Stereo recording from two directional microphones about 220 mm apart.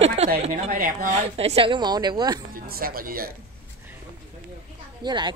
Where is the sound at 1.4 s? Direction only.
25° right (ahead or behind).